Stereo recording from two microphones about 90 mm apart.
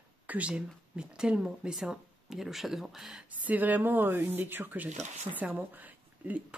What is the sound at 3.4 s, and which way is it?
Speech, 20° right (ahead or behind).